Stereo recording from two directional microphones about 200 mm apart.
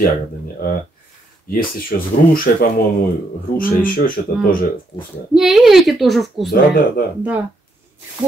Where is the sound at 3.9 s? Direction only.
45° left (ahead or behind).